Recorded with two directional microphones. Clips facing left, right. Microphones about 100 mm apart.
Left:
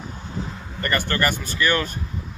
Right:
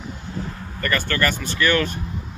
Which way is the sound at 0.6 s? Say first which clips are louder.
Even; 15° left (ahead or behind).